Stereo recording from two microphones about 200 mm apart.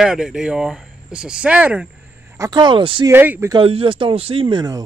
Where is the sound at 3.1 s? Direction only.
10° right (ahead or behind).